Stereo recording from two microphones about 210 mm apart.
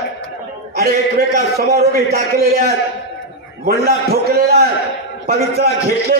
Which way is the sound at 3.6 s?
50° right (ahead or behind).